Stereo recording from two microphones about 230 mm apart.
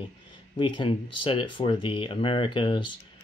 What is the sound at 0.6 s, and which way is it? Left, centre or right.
Speech, left.